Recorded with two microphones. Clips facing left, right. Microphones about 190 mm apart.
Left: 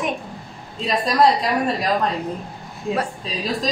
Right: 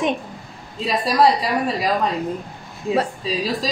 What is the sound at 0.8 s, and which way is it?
Speech, 5° right (ahead or behind).